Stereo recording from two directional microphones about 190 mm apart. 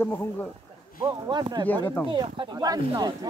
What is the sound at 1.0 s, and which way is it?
A woman's voice, 20° right (ahead or behind).